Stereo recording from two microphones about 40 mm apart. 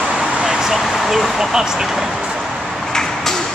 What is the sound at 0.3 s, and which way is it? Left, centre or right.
Vehicle, right.